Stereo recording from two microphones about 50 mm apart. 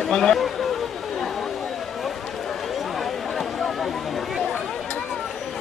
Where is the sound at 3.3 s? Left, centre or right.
Centre.